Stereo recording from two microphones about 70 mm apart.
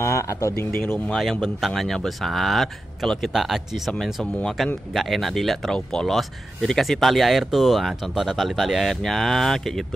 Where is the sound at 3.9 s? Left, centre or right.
Centre.